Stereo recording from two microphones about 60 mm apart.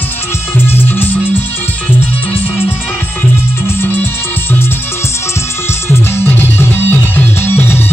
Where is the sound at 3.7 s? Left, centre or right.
Left.